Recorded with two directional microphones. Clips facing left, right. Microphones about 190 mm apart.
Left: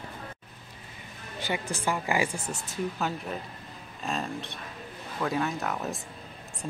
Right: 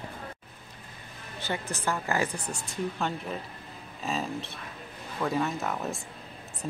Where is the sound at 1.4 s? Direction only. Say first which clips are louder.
Left 2 dB; 15° left (ahead or behind).